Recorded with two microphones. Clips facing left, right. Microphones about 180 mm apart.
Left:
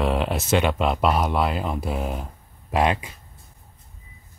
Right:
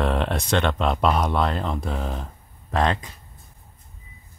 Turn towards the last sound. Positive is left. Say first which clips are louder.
# left 1 dB
turn(degrees=10)  # may be behind; listen again after turning